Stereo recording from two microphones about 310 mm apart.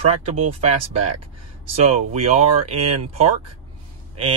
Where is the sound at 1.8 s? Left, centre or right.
Right.